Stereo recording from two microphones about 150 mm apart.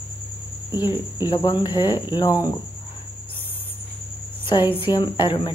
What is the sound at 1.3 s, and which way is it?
Speech, 30° left (ahead or behind).